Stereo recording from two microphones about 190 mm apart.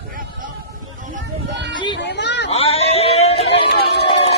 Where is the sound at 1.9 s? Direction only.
65° left (ahead or behind).